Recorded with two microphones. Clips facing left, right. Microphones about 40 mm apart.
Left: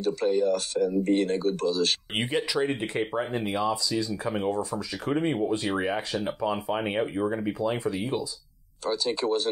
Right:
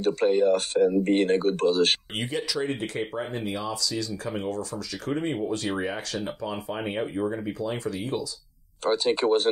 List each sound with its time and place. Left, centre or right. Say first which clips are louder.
0.0 s speech: right 3 dB; right
2.1 s speech: left 2 dB; left
8.8 s speech: right 4 dB; right